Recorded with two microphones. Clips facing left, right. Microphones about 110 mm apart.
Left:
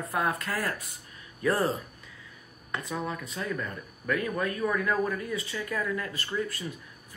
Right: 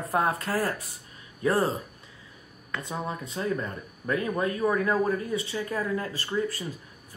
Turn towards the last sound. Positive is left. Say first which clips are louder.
# right 3 dB
turn(degrees=-30)  # may be behind; listen again after turning